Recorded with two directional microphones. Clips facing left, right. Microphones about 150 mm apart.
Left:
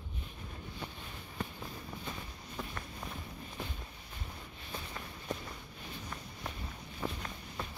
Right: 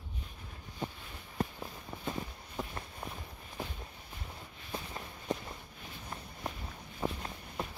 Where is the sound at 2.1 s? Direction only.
25° right (ahead or behind).